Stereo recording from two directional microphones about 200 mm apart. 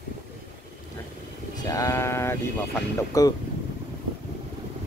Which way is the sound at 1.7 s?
15° left (ahead or behind).